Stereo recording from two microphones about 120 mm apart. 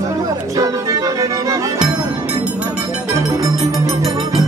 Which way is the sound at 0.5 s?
30° right (ahead or behind).